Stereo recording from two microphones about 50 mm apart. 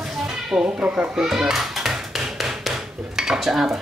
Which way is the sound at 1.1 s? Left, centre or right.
Centre.